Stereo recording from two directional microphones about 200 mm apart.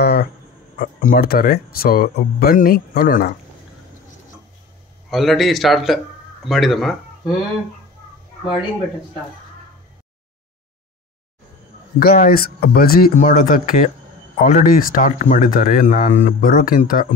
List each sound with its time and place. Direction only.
0.0 s a sound: 50° left (ahead or behind)
0.7 s speech: 45° left (ahead or behind)
5.1 s a man's voice: centre (ahead or behind)
12.0 s speech: 50° left (ahead or behind)